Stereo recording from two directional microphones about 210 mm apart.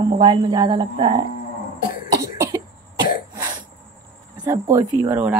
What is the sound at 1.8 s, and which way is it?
Cough, 40° left (ahead or behind).